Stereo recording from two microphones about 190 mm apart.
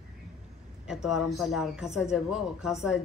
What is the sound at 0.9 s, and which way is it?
A man's voice, 5° right (ahead or behind).